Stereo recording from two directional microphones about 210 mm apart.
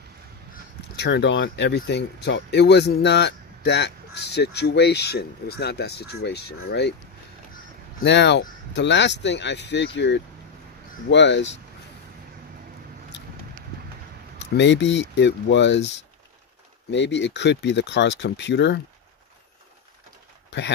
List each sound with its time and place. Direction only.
0.9 s speech: 55° left (ahead or behind)
8.0 s speech: 55° left (ahead or behind)
14.4 s speech: 55° left (ahead or behind)
16.9 s speech: 55° left (ahead or behind)
20.4 s bird: 55° left (ahead or behind)